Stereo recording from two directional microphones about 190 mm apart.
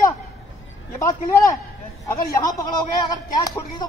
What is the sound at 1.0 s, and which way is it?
A man's voice, 15° left (ahead or behind).